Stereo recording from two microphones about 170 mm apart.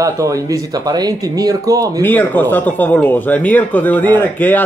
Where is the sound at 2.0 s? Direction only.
10° left (ahead or behind).